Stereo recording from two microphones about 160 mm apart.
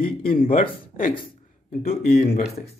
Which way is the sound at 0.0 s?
65° left (ahead or behind).